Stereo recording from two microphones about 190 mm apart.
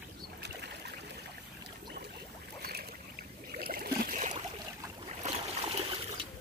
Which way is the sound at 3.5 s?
50° right (ahead or behind).